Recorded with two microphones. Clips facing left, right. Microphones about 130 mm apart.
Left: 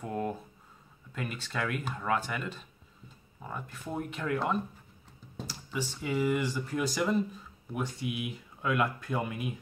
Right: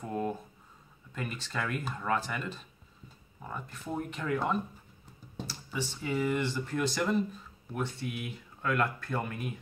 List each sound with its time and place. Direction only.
0.0 s a sound: centre (ahead or behind)
1.1 s speech: centre (ahead or behind)
5.7 s speech: 10° left (ahead or behind)